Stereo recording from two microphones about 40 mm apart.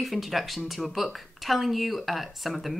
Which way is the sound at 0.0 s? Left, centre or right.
Centre.